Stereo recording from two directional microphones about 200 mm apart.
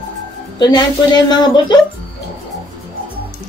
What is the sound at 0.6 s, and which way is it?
A woman's voice, 20° left (ahead or behind).